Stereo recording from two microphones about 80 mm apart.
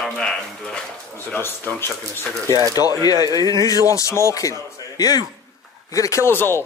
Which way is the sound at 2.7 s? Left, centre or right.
Left.